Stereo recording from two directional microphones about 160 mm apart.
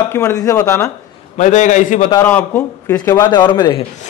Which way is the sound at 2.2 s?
10° left (ahead or behind).